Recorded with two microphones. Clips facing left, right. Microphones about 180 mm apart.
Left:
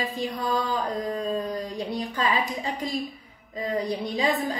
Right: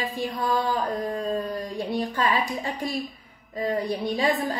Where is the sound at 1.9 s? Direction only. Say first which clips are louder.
Right 2 dB; 20° left (ahead or behind).